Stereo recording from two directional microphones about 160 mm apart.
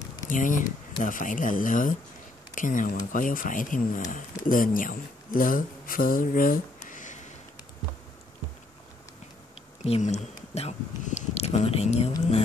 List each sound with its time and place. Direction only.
0.3 s speech: 55° left (ahead or behind)
9.8 s speech: 40° left (ahead or behind)